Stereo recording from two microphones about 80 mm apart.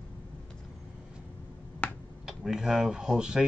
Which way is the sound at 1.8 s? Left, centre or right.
Left.